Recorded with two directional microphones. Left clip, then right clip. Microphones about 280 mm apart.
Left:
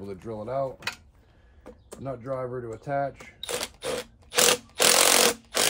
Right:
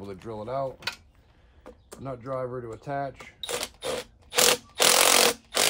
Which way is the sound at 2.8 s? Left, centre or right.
Centre.